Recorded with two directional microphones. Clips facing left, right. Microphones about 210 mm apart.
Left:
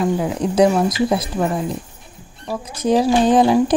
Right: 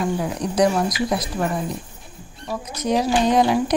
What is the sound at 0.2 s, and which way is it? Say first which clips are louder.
Speech: left 4 dB; 25° left (ahead or behind).